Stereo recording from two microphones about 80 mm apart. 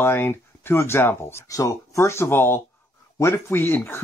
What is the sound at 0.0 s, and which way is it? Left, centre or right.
Speech, left.